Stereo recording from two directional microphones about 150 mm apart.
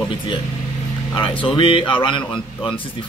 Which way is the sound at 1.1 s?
35° left (ahead or behind).